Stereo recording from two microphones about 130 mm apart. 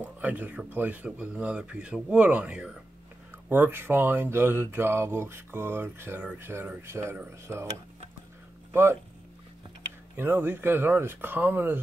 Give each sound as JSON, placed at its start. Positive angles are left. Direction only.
{"t": 0.0, "sound": "speech", "side_deg": -10}
{"t": 10.1, "sound": "speech", "side_deg": -15}